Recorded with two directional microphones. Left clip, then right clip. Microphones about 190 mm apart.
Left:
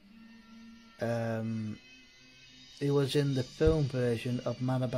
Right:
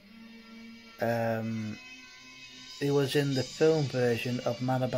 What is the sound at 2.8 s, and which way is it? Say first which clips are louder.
Speech: right 2 dB; 20° left (ahead or behind).